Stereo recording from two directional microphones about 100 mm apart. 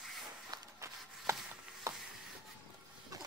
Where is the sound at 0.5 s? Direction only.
30° right (ahead or behind).